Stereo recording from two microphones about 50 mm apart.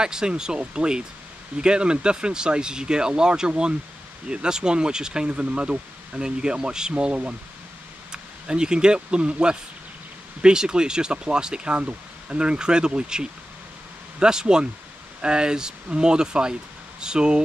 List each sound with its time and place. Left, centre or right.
0.0 s speech: centre